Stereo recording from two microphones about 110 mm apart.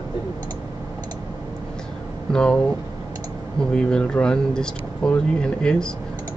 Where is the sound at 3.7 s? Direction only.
10° left (ahead or behind).